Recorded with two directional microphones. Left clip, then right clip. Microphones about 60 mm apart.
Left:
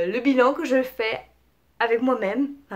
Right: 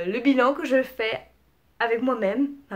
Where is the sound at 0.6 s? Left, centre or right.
Left.